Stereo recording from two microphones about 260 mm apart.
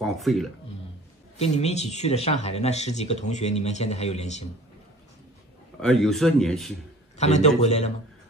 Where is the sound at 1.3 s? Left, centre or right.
Left.